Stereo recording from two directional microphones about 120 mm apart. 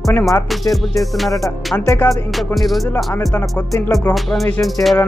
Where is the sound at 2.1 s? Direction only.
Centre (ahead or behind).